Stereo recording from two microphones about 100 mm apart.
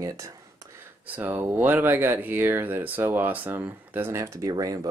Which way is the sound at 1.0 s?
15° right (ahead or behind).